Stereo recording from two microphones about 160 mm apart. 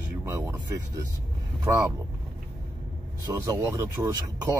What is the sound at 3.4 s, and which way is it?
Speech, 20° right (ahead or behind).